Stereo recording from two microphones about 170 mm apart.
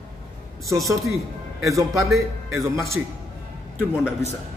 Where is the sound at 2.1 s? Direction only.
Centre (ahead or behind).